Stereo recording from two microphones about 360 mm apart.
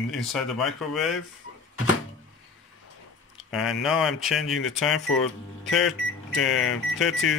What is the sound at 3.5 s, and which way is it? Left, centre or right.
Speech, centre.